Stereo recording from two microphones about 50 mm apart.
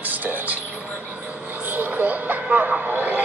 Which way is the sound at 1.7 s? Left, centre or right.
Right.